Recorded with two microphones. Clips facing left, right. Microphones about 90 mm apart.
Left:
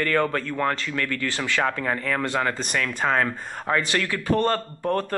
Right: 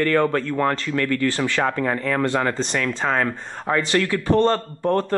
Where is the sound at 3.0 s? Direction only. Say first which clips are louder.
Right 1 dB; centre (ahead or behind).